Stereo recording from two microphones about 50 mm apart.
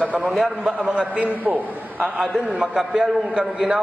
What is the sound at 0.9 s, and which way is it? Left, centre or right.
Speech, right.